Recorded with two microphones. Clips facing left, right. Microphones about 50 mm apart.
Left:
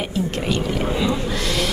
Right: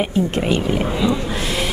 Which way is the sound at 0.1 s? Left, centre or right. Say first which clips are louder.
Right 4 dB; right.